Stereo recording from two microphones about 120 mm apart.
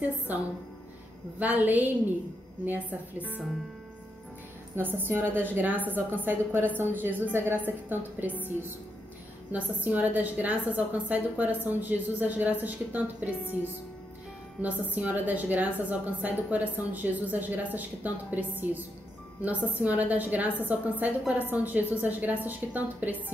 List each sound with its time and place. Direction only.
1.4 s a woman's voice: 15° right (ahead or behind)
4.7 s a woman's voice: 15° right (ahead or behind)
9.5 s a woman's voice: 15° right (ahead or behind)
14.6 s a woman's voice: 15° right (ahead or behind)